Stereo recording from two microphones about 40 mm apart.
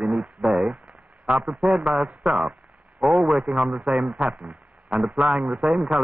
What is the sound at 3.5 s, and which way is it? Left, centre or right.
Speech, right.